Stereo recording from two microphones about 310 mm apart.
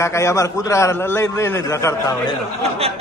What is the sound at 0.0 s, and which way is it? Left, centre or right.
A man's voice, centre.